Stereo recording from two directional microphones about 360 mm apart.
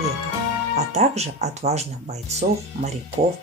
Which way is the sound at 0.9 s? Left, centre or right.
Centre.